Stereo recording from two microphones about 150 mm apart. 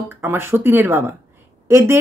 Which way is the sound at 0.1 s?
15° right (ahead or behind).